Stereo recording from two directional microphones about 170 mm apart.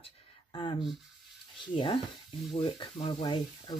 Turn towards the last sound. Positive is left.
turn(degrees=25)  # may be behind; listen again after turning